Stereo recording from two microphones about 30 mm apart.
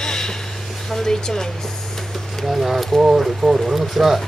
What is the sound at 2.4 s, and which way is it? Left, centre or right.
Speech, centre.